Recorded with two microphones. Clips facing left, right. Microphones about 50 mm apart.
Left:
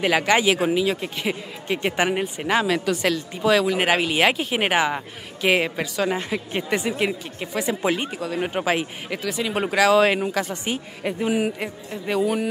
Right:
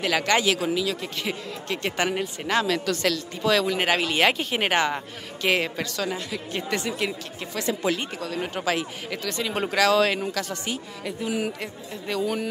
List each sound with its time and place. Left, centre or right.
0.0 s speech: centre
6.0 s a woman's voice: left
6.7 s speech: centre
11.3 s speech: centre